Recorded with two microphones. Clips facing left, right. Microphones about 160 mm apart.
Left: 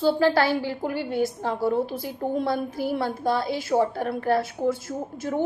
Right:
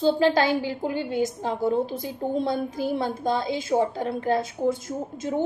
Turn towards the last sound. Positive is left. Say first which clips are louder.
# even
turn(degrees=-20)  # may be behind; listen again after turning